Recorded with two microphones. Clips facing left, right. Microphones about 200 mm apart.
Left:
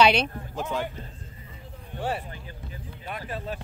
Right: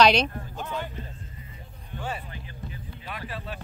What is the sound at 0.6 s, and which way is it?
Speech, 90° left.